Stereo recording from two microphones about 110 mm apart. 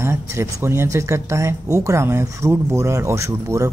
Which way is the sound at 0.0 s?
25° right (ahead or behind).